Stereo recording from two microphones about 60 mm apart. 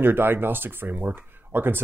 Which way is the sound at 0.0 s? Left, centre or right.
Right.